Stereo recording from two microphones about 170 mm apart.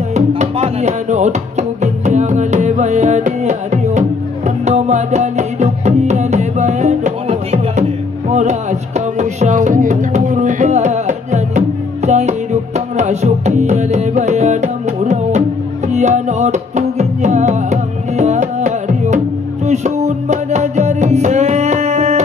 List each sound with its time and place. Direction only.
0.1 s music: 40° right (ahead or behind)